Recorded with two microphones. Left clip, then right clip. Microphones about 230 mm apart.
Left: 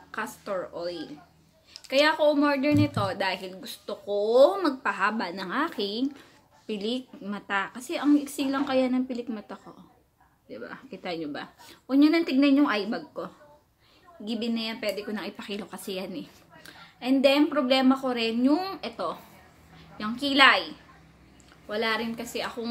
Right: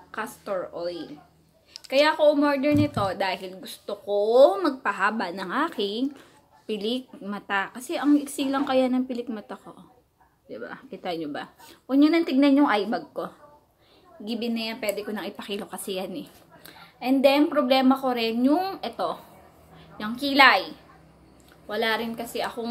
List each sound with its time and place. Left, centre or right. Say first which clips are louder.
0.1 s a woman's voice: right 2 dB; centre